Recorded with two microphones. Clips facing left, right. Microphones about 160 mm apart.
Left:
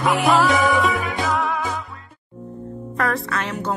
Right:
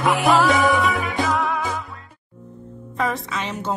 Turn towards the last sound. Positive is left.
turn(degrees=-20)  # may be behind; listen again after turning